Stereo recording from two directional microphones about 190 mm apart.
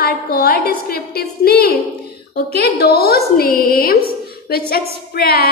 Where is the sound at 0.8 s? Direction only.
55° left (ahead or behind).